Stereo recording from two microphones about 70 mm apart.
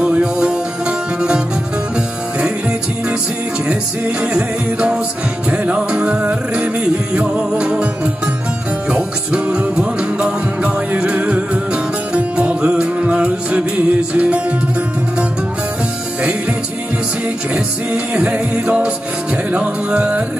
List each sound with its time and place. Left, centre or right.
0.0 s music: centre
4.2 s music: centre
17.9 s music: centre